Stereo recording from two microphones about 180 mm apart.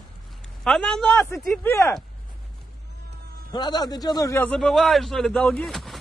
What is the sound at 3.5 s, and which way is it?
A man's voice, 25° left (ahead or behind).